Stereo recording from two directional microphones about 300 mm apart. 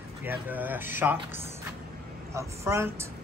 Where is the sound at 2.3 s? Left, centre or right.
Centre.